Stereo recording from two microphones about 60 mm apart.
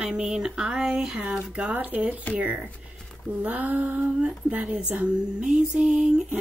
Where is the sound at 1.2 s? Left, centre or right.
Centre.